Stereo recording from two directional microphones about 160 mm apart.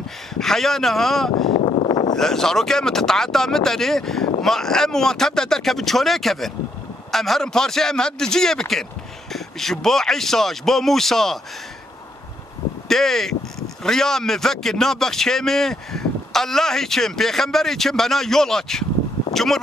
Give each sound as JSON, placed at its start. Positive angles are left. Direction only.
{"t": 0.3, "sound": "speech", "side_deg": 0}
{"t": 1.5, "sound": "a sound", "side_deg": 25}
{"t": 2.1, "sound": "speech", "side_deg": 5}
{"t": 12.8, "sound": "speech", "side_deg": 5}